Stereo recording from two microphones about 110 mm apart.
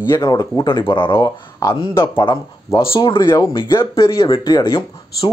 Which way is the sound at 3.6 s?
25° left (ahead or behind).